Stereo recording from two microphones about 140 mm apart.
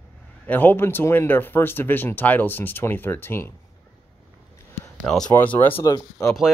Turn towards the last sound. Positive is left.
turn(degrees=25)  # may be behind; listen again after turning